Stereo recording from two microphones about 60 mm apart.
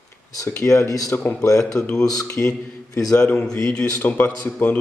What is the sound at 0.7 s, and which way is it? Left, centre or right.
Speech, left.